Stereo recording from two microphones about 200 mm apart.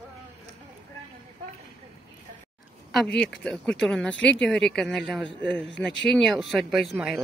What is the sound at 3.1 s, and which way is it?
Speech, 5° left (ahead or behind).